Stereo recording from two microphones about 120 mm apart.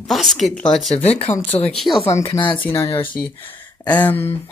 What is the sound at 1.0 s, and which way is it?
Speech, 60° left (ahead or behind).